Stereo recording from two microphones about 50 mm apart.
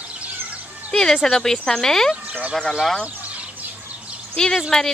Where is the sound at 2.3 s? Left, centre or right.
Right.